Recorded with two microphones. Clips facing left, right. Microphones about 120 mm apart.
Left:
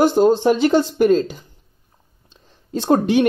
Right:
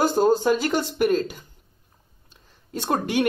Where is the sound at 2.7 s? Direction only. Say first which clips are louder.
Left 8 dB; 25° left (ahead or behind).